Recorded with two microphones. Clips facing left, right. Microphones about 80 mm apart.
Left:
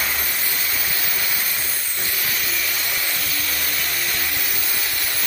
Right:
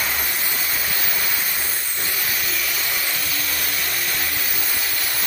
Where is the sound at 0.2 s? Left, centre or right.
Centre.